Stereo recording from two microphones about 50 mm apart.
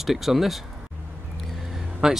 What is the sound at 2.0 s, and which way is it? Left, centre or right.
Speech, centre.